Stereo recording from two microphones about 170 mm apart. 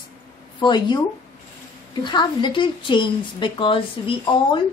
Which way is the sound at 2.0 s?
25° left (ahead or behind).